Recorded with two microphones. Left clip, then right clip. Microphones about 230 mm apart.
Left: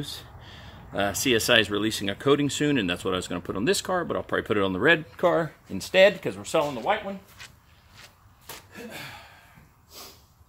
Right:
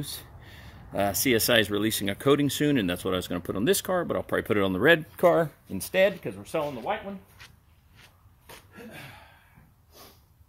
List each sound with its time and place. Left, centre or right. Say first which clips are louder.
0.1 s speech: left 2 dB; right
5.7 s speech: left 2 dB; centre
6.2 s speech: left 5 dB; centre
7.3 s a sound: left 5 dB; centre